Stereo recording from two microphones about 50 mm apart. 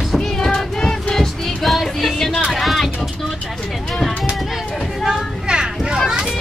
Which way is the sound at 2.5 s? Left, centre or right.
Centre.